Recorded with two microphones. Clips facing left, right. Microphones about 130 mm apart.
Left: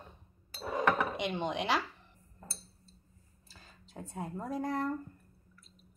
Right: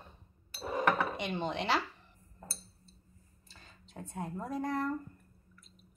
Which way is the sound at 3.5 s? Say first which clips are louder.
Even; 5° left (ahead or behind).